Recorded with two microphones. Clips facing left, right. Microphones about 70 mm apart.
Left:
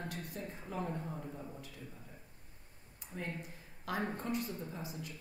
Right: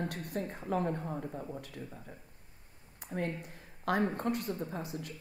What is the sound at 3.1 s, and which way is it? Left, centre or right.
Speech, right.